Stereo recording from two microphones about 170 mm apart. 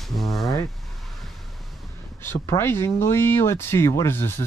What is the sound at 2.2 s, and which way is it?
Speech, 15° left (ahead or behind).